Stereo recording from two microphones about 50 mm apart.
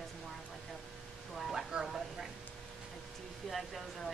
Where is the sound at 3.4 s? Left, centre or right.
Centre.